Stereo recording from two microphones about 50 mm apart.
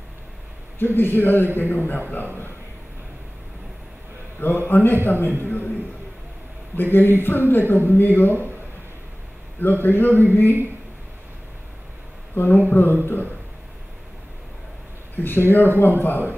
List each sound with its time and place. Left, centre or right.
0.7 s a man's voice: left
4.4 s a man's voice: left
6.8 s a man's voice: left
9.6 s a man's voice: left
12.4 s a man's voice: left
15.1 s a man's voice: left